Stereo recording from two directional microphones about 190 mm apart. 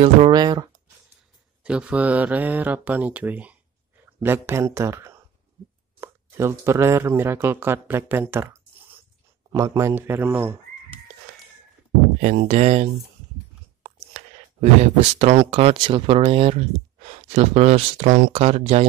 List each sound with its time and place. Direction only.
0.3 s speech: 20° right (ahead or behind)
1.6 s speech: 5° right (ahead or behind)
12.2 s speech: 35° right (ahead or behind)